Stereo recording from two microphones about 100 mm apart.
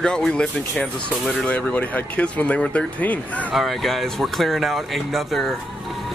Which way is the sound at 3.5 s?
Centre (ahead or behind).